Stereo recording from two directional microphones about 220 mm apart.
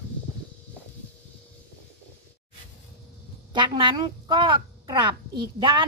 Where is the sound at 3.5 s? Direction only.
20° right (ahead or behind).